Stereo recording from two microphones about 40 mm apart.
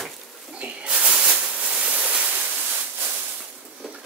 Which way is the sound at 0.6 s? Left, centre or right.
Right.